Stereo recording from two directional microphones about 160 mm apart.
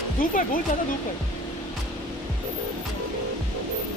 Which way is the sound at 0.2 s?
60° left (ahead or behind).